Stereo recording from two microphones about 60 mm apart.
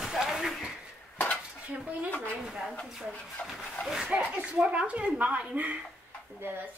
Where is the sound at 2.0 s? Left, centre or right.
Left.